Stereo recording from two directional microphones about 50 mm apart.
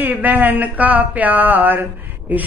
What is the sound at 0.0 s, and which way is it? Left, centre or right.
Speech, right.